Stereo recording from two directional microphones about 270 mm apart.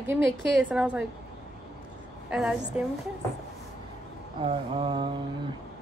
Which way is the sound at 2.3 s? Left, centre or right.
Centre.